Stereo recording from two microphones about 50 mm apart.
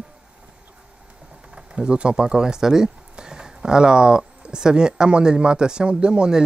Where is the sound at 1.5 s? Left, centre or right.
Centre.